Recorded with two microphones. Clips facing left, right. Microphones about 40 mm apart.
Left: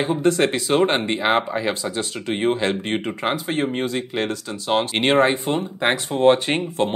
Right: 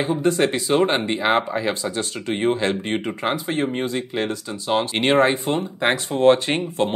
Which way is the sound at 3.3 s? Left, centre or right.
Left.